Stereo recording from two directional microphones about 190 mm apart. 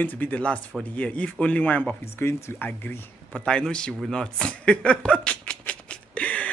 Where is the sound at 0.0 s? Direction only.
10° left (ahead or behind).